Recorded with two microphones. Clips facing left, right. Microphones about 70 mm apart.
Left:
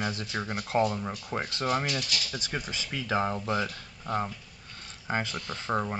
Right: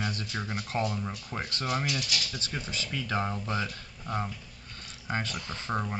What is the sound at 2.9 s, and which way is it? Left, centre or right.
Speech, centre.